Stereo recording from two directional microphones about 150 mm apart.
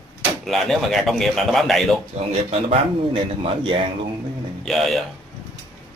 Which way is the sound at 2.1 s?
45° right (ahead or behind).